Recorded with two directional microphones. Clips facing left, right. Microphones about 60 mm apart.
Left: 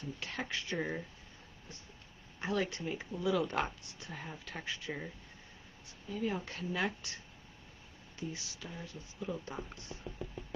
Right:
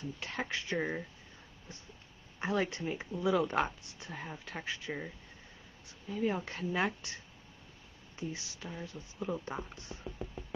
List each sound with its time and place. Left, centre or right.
0.0 s speech: right
2.3 s speech: right
6.1 s speech: centre